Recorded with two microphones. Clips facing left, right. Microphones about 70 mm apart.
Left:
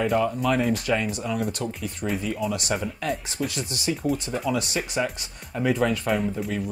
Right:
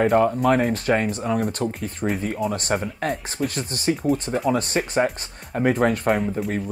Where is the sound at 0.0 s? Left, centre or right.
Right.